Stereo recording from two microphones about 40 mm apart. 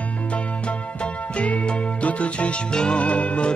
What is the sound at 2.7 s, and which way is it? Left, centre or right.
Music, left.